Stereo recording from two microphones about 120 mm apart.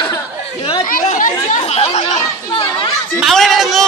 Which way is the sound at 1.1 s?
75° left (ahead or behind).